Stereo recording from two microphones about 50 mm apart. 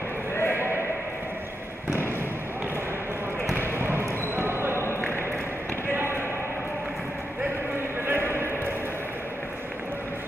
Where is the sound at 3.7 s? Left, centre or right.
Right.